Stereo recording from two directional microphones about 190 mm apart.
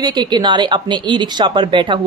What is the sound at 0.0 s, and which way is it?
Speech, 20° right (ahead or behind).